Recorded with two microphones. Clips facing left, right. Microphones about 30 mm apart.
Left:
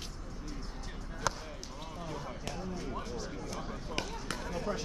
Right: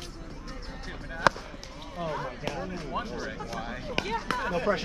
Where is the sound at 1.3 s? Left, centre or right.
Right.